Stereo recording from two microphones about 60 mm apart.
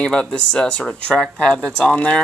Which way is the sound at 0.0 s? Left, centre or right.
Centre.